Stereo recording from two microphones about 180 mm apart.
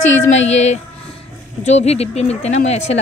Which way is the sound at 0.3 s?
40° left (ahead or behind).